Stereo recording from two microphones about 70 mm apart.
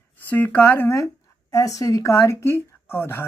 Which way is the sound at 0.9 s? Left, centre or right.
Left.